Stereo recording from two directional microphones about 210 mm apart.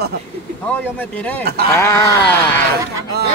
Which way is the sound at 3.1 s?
50° right (ahead or behind).